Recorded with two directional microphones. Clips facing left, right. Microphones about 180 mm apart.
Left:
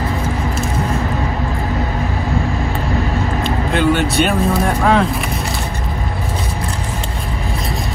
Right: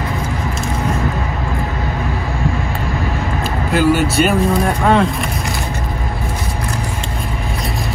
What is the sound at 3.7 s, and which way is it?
Speech, 5° right (ahead or behind).